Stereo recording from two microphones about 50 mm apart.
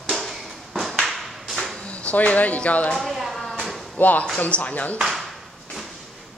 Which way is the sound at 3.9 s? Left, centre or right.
Left.